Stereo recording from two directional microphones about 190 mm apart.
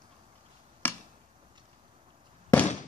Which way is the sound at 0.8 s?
10° left (ahead or behind).